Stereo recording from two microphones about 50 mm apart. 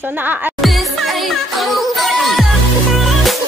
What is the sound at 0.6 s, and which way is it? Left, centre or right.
Music, centre.